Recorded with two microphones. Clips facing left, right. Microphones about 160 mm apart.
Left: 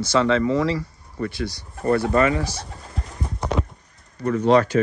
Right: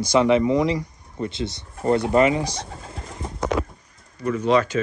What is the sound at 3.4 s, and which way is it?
Horse, 5° right (ahead or behind).